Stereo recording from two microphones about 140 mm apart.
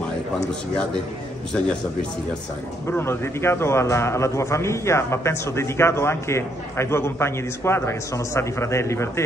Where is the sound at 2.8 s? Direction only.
15° left (ahead or behind).